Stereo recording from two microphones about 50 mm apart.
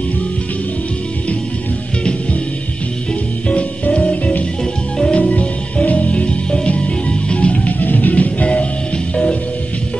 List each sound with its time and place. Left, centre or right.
3.4 s music: left
4.9 s music: centre
5.2 s music: left
7.8 s music: left; by 9.4 s centre